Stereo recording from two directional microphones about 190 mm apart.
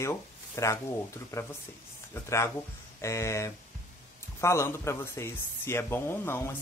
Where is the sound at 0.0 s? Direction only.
15° left (ahead or behind).